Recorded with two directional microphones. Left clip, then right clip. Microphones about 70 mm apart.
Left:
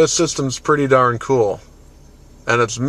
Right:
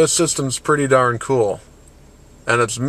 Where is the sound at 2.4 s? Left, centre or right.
Centre.